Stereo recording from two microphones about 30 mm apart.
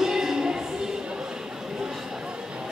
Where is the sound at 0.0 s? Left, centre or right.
Centre.